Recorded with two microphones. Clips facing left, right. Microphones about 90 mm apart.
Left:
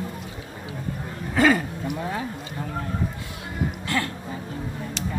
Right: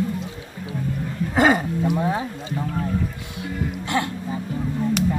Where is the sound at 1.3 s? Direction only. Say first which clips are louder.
Right 2 dB; 25° right (ahead or behind).